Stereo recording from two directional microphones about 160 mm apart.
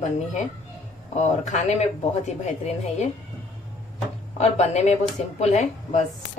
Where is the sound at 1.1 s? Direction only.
45° left (ahead or behind).